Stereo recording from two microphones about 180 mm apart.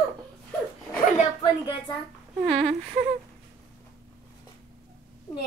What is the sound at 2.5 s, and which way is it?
Speech, 5° left (ahead or behind).